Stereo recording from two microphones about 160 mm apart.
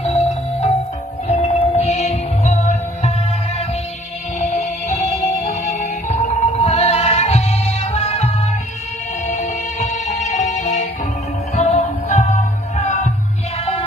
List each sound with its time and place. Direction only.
0.0 s music: 40° left (ahead or behind)
4.4 s music: 45° left (ahead or behind)
9.3 s music: 45° left (ahead or behind)